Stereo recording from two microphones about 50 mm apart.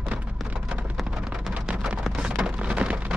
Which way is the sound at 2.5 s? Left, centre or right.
Right.